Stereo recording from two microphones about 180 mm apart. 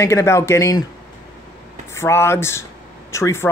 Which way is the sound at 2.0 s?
15° left (ahead or behind).